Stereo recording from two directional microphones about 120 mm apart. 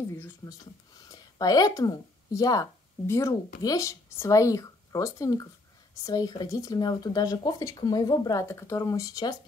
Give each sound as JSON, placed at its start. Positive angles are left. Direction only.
{"t": 0.1, "sound": "speech", "side_deg": 30}